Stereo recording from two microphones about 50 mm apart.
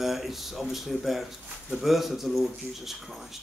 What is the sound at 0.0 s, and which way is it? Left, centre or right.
Speech, centre.